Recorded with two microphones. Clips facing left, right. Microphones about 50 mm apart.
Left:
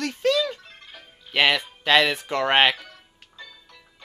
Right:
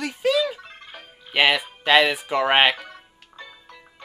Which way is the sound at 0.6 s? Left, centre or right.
Centre.